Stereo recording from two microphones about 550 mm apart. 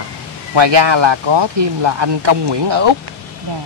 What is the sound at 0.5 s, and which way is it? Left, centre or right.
Speech, right.